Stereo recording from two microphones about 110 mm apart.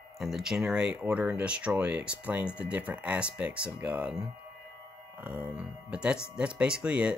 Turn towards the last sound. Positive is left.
turn(degrees=-10)  # may be behind; listen again after turning